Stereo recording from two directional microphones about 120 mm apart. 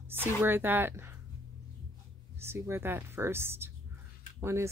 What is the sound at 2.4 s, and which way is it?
Speech, 20° right (ahead or behind).